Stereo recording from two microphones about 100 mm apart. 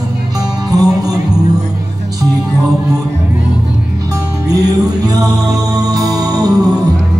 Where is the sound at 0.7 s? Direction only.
40° right (ahead or behind).